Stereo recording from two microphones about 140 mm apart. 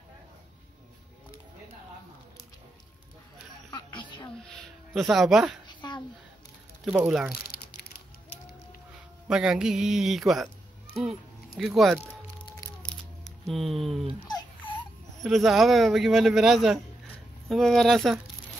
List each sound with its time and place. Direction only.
4.9 s a man's voice: centre (ahead or behind)
5.7 s a sound: 35° left (ahead or behind)
7.0 s a man's voice: centre (ahead or behind)
9.3 s a man's voice: 5° right (ahead or behind)
11.0 s music: centre (ahead or behind)
12.8 s a sound: centre (ahead or behind)
14.2 s baby cry: 30° left (ahead or behind)
15.1 s a man's voice: centre (ahead or behind)